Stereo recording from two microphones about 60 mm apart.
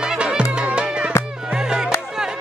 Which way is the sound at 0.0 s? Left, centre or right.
Centre.